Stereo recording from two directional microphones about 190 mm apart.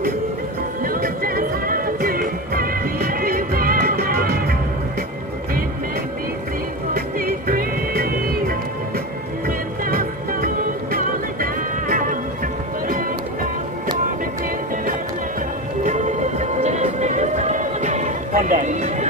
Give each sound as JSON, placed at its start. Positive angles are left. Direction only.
{"t": 0.8, "sound": "music", "side_deg": -50}
{"t": 6.9, "sound": "music", "side_deg": -50}
{"t": 15.8, "sound": "music", "side_deg": -40}